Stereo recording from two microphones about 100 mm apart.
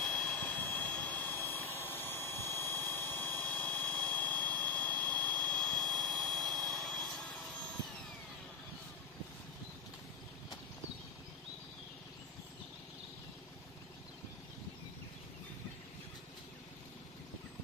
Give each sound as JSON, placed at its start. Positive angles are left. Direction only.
{"t": 0.0, "sound": "vehicle", "side_deg": 10}